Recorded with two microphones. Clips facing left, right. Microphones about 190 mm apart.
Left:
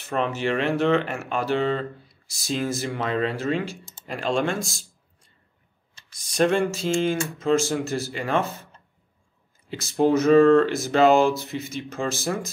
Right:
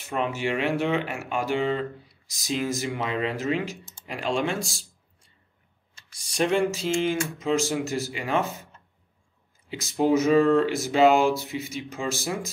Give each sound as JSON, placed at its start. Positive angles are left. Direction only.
{"t": 0.1, "sound": "speech", "side_deg": -10}
{"t": 6.5, "sound": "speech", "side_deg": -15}
{"t": 9.7, "sound": "speech", "side_deg": -15}